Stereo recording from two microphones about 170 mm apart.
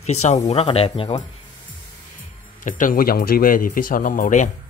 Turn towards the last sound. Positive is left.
turn(degrees=50)  # may be behind; listen again after turning